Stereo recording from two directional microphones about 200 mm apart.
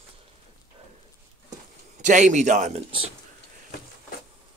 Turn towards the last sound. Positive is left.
turn(degrees=-30)  # may be behind; listen again after turning